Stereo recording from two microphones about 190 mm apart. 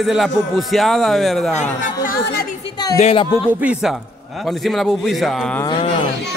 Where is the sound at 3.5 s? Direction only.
10° right (ahead or behind).